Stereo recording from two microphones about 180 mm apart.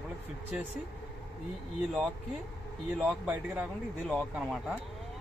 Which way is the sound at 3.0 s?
10° right (ahead or behind).